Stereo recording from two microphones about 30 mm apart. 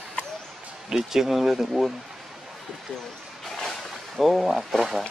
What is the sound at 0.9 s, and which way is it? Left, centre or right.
Speech, centre.